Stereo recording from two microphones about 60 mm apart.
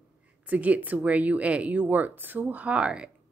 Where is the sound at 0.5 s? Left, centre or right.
Right.